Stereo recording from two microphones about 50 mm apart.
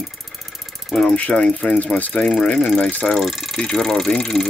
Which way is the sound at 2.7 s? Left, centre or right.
Left.